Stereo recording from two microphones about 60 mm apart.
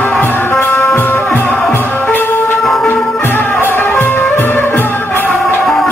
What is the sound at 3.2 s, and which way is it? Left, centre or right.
Music, left.